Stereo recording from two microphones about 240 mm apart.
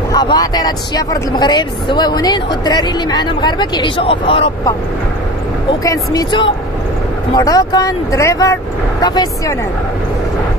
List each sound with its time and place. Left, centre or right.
0.1 s speech: centre
5.9 s speech: centre